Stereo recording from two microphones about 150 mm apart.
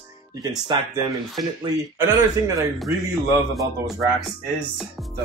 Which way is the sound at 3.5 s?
Centre (ahead or behind).